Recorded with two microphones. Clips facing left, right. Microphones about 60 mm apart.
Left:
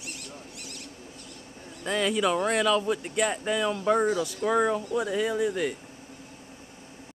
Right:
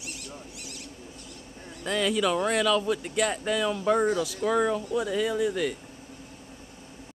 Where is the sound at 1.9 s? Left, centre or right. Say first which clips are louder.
Even; left.